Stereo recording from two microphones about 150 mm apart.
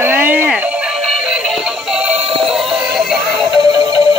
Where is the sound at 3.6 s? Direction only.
25° right (ahead or behind).